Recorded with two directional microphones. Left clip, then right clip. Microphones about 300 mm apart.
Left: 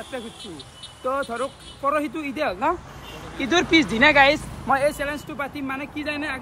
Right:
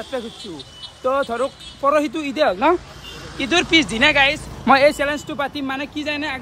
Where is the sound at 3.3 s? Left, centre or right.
Centre.